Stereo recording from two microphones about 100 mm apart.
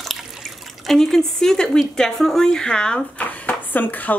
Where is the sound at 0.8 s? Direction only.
Centre (ahead or behind).